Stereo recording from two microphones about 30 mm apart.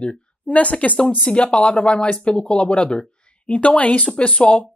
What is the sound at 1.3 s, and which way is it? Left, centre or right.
Speech, left.